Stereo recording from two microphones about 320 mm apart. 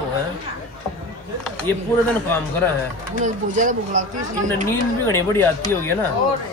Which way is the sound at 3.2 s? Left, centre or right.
Right.